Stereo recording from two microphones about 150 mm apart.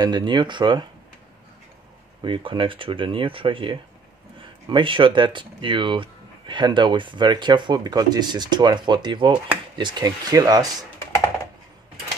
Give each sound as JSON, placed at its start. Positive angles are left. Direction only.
{"t": 0.0, "sound": "speech", "side_deg": -30}
{"t": 2.2, "sound": "speech", "side_deg": -35}